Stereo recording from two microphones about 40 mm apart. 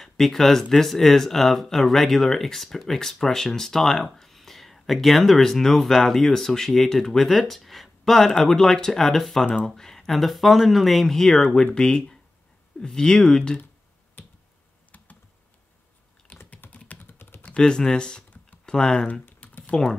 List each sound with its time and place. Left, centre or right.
0.0 s speech: centre
11.5 s speech: centre
16.3 s typing: left
17.0 s typing: left
17.6 s speech: centre
19.4 s computer keyboard: left